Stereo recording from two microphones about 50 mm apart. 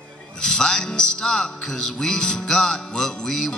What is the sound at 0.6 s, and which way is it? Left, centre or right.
Music, centre.